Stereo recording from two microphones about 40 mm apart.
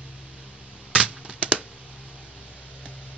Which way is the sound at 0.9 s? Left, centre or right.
Right.